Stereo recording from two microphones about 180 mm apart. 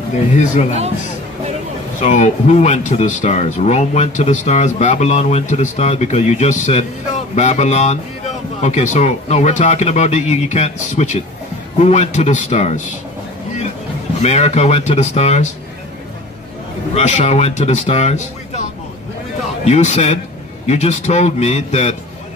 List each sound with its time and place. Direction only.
0.3 s speech: 45° left (ahead or behind)
2.0 s speech: 40° left (ahead or behind)
14.2 s speech: 35° left (ahead or behind)
16.9 s speech: 40° left (ahead or behind)